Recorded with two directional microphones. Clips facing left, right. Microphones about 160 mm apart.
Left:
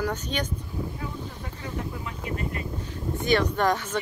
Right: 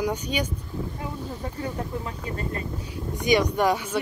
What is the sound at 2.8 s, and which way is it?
Speech, 10° right (ahead or behind).